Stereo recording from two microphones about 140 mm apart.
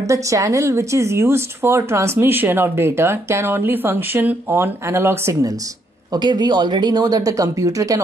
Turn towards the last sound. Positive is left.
turn(degrees=-25)  # may be behind; listen again after turning